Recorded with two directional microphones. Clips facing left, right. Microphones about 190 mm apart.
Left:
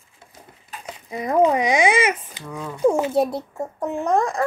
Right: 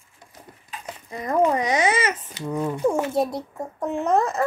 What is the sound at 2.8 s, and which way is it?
Speech, 15° left (ahead or behind).